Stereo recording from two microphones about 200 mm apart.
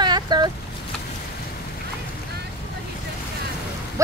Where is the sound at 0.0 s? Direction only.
20° right (ahead or behind).